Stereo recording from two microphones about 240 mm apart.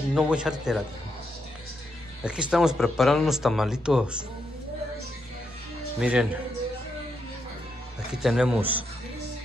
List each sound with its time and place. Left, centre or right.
0.1 s speech: centre
2.2 s speech: centre
5.9 s speech: centre
8.1 s speech: centre